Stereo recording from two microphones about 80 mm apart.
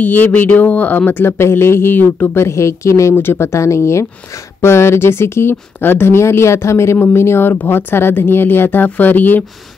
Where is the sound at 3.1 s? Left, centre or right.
Left.